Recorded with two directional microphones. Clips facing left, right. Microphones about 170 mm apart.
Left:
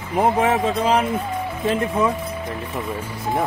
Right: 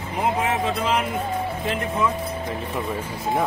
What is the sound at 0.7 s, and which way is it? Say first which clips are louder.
Speech: left 4 dB; 35° left (ahead or behind).